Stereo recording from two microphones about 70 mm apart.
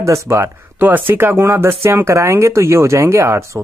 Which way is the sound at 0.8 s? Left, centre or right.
Right.